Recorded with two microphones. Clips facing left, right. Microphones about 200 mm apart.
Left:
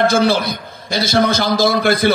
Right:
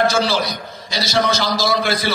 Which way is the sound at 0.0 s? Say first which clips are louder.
Left 4 dB; 55° left (ahead or behind).